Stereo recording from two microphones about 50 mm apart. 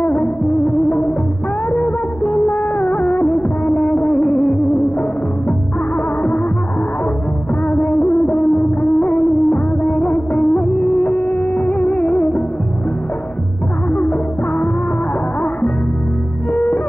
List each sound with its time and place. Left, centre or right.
0.0 s music: left
1.7 s music of bollywood: left
7.6 s music of bollywood: left
16.5 s music: left